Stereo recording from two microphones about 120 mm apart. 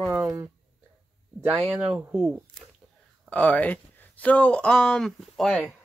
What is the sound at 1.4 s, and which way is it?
Speech, 5° right (ahead or behind).